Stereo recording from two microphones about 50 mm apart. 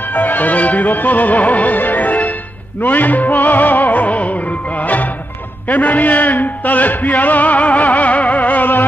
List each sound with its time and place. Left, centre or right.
0.1 s music: left
5.7 s a man's voice: left